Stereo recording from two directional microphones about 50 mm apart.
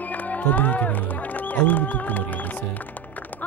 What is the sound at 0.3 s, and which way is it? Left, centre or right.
Speech, left.